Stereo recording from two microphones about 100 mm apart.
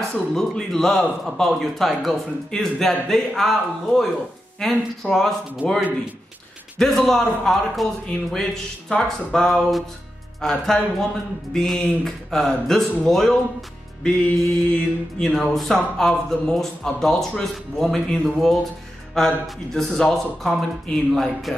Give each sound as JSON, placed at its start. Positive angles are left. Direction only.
{"t": 0.1, "sound": "speech", "side_deg": 5}
{"t": 5.6, "sound": "speech", "side_deg": -15}
{"t": 6.8, "sound": "speech", "side_deg": 0}